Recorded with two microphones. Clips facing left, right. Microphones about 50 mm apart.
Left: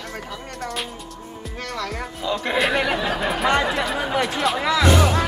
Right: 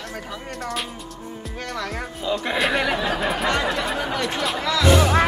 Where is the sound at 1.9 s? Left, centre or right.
Centre.